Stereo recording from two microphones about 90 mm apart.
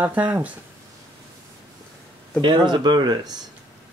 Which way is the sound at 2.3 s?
60° right (ahead or behind).